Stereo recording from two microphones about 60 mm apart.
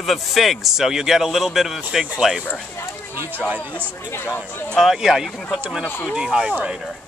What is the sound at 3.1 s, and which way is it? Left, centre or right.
Speech, right.